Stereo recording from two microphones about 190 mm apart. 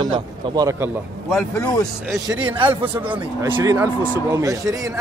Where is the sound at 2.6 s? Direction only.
10° right (ahead or behind).